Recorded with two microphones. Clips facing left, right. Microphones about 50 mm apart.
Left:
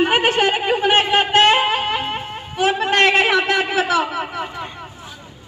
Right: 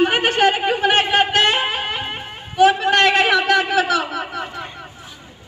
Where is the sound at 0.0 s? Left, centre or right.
Centre.